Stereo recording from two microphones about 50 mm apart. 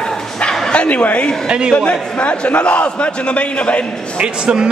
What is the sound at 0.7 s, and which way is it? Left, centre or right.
A man's voice, left.